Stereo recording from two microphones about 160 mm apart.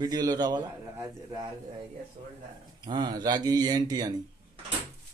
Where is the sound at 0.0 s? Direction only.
25° right (ahead or behind).